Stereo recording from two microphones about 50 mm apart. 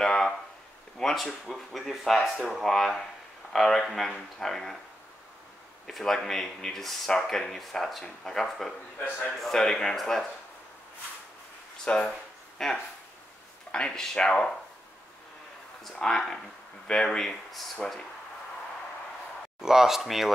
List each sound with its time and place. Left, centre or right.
0.0 s a sound: centre
0.9 s speech: centre
5.9 s speech: centre
11.8 s speech: centre
15.8 s speech: centre
19.6 s speech: centre